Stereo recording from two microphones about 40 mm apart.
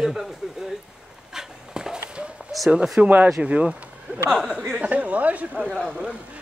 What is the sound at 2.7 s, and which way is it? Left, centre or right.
Speech, centre.